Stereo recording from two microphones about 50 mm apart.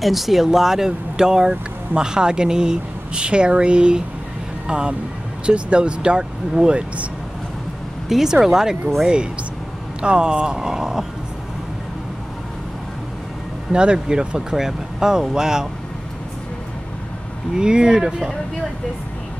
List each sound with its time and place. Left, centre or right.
0.0 s speech: centre
8.1 s speech: centre
13.7 s speech: centre
17.6 s speech: centre